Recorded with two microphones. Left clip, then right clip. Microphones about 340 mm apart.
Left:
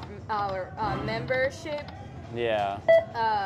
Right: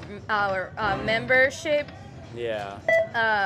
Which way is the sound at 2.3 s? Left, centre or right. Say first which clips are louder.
Left 4 dB; left.